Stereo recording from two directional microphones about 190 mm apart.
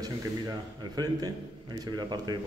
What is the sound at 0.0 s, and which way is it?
A man's voice, 20° right (ahead or behind).